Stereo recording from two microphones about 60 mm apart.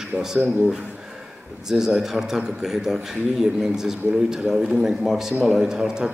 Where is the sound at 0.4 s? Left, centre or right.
Right.